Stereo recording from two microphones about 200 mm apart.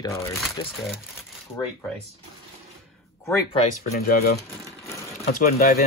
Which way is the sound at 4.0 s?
50° left (ahead or behind).